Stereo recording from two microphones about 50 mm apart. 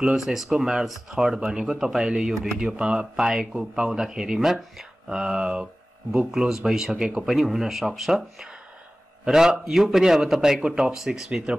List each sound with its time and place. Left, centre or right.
0.1 s speech: centre